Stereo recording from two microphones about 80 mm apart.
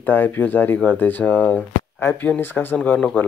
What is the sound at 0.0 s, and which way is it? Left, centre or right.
Speech, left.